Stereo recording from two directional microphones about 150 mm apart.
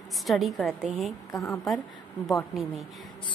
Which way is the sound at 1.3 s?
20° left (ahead or behind).